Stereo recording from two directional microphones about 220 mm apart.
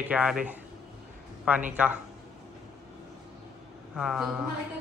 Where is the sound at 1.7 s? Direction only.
5° right (ahead or behind).